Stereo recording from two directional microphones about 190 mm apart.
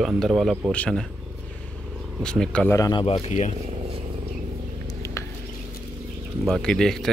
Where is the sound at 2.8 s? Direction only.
25° left (ahead or behind).